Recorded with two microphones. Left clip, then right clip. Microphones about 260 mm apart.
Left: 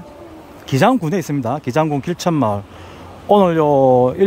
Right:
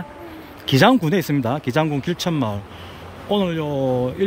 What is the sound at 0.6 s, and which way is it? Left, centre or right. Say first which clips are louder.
Speech: even; centre.